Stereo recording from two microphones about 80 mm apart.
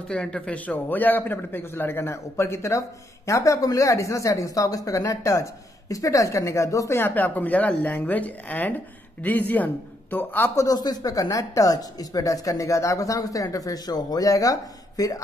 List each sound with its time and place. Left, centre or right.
0.1 s speech: centre; by 7.0 s left
7.0 s speech: left
10.5 s speech: left